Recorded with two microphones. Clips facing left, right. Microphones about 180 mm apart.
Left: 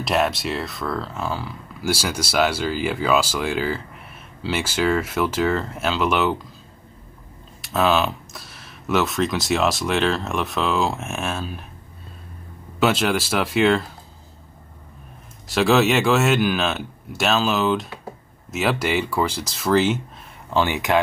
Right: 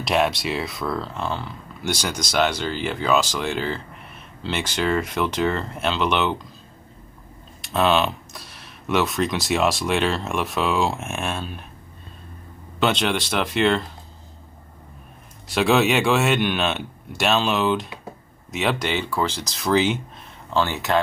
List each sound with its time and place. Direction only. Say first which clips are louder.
0.0 s speech: even; centre (ahead or behind)
7.6 s speech: even; centre (ahead or behind)
12.8 s speech: left 2 dB; 5° left (ahead or behind)
15.4 s speech: left 1 dB; centre (ahead or behind)
20.4 s speech: left 2 dB; 15° left (ahead or behind)